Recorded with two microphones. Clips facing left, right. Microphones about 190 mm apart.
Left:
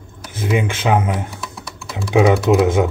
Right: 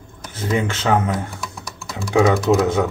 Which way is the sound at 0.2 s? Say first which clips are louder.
Left 2 dB; 10° left (ahead or behind).